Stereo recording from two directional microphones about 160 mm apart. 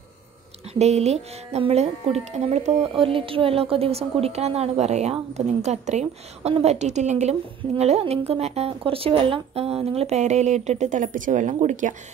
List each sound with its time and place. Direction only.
0.7 s a woman's voice: 45° right (ahead or behind)